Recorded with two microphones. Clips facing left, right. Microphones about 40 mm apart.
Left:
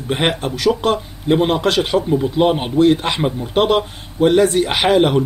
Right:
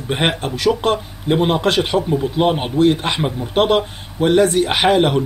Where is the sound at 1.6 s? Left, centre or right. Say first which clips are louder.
Even; centre.